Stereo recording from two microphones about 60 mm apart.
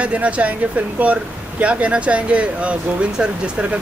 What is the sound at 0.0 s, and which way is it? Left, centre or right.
Speech, right.